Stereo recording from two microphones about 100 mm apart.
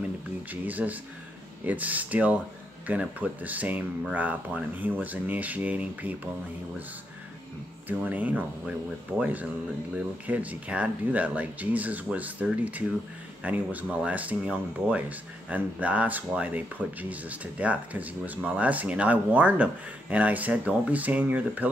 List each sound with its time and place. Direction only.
0.5 s speech: 15° right (ahead or behind)
8.0 s speech: 15° right (ahead or behind)